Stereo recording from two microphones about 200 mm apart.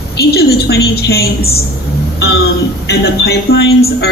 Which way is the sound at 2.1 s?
55° left (ahead or behind).